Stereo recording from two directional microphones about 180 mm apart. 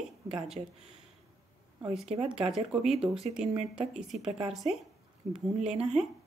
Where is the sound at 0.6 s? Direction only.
40° right (ahead or behind).